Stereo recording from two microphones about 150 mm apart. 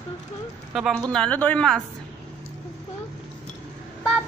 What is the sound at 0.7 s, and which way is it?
Speech, 5° right (ahead or behind).